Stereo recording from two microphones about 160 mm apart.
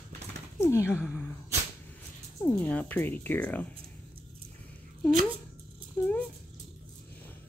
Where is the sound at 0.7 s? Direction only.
15° left (ahead or behind).